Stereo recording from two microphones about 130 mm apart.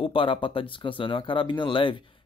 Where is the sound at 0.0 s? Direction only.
45° left (ahead or behind).